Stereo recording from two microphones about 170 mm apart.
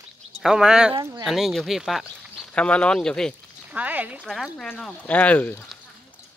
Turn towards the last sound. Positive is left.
turn(degrees=10)  # may be behind; listen again after turning